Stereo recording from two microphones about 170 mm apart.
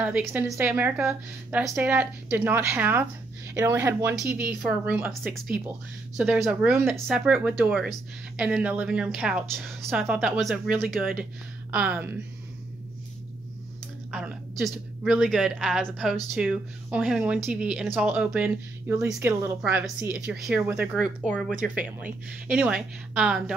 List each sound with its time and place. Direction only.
0.0 s speech: 5° right (ahead or behind)
14.1 s speech: 5° right (ahead or behind)
21.7 s speech: 5° right (ahead or behind)